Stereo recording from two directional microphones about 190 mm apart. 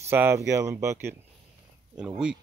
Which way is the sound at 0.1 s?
10° right (ahead or behind).